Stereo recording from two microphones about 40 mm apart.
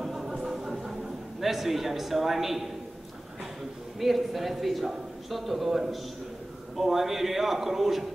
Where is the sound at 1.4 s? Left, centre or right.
Centre.